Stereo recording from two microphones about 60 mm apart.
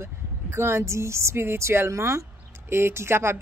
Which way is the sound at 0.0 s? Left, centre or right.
Right.